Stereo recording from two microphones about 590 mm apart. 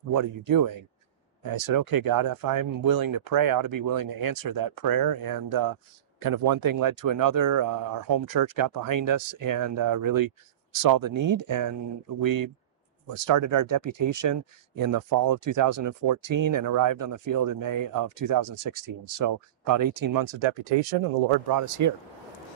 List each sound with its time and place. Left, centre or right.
0.1 s speech: right
20.6 s speech: right
21.5 s speech: right